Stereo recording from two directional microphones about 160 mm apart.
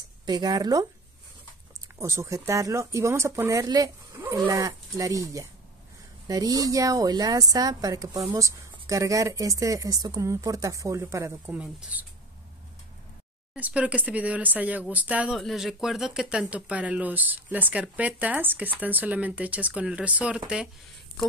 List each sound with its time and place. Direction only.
0.3 s speech: 25° right (ahead or behind)
2.0 s speech: 15° right (ahead or behind)
13.6 s speech: 10° right (ahead or behind)